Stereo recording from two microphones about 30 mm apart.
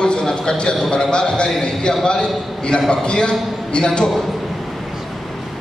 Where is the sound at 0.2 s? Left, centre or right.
Centre.